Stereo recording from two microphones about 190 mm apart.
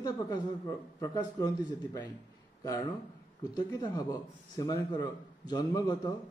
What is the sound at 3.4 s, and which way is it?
Speech, 20° left (ahead or behind).